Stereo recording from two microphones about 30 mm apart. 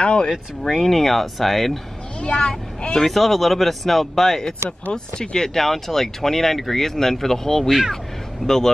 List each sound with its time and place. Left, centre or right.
0.0 s a sound: left
0.3 s speech: centre
0.8 s speech: centre
2.1 s speech: left
3.1 s speech: centre
4.9 s speech: left
5.5 s speech: centre